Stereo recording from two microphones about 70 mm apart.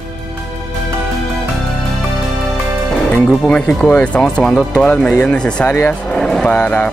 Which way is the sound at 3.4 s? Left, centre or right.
Centre.